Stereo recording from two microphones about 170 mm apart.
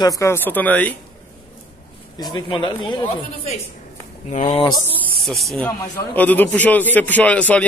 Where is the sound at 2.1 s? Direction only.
25° left (ahead or behind).